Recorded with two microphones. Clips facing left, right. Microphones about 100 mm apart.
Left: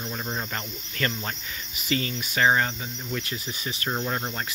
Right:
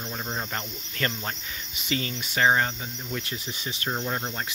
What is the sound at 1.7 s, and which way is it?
Speech, 25° right (ahead or behind).